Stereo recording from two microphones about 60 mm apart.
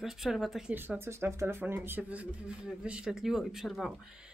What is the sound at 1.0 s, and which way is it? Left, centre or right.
Speech, right.